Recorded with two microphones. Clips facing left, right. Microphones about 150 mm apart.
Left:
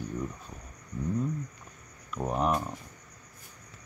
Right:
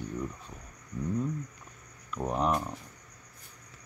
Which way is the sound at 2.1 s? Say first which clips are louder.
Left 1 dB; 10° left (ahead or behind).